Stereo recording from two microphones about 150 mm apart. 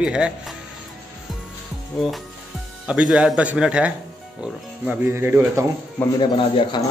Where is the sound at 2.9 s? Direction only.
5° right (ahead or behind).